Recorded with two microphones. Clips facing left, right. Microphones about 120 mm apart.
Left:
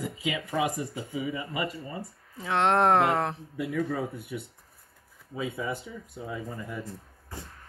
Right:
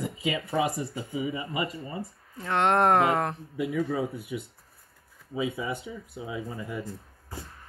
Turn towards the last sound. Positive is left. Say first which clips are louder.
# right 1 dB
turn(degrees=-5)  # may be behind; listen again after turning